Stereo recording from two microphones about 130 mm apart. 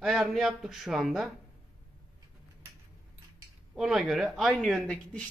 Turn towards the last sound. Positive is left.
turn(degrees=0)  # may be behind; listen again after turning